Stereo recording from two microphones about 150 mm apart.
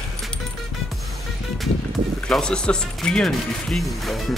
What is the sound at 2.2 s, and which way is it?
Speech, 5° left (ahead or behind).